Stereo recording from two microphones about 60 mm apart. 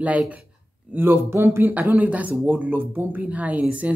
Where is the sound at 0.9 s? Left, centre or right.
Right.